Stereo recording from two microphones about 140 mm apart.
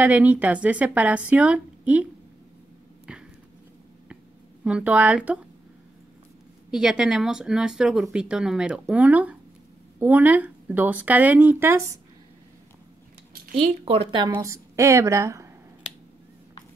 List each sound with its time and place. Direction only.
0.0 s speech: 10° right (ahead or behind)
3.1 s a sound: 5° right (ahead or behind)
4.6 s speech: 10° right (ahead or behind)
6.7 s speech: 5° right (ahead or behind)
13.6 s speech: 40° right (ahead or behind)
14.2 s a woman's voice: 25° right (ahead or behind)